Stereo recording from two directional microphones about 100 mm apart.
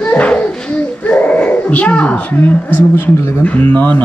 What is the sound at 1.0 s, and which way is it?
Speech, 15° left (ahead or behind).